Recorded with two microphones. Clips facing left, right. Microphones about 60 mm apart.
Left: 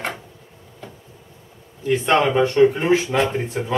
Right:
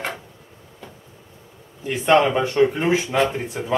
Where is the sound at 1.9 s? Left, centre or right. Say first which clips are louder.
Right 1 dB; centre.